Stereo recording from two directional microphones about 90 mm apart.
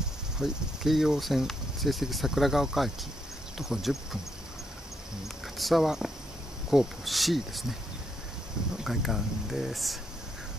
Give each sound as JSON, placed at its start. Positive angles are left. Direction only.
{"t": 0.4, "sound": "speech", "side_deg": -5}
{"t": 5.6, "sound": "speech", "side_deg": 0}
{"t": 8.8, "sound": "speech", "side_deg": -5}